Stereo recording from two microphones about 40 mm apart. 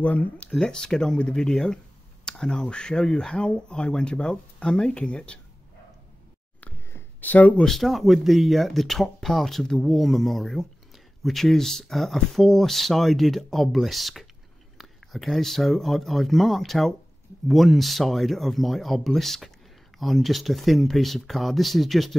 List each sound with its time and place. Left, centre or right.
0.0 s speech: left
0.7 s speech: centre
2.2 s a sound: centre
2.7 s speech: left
7.2 s speech: left
7.6 s speech: centre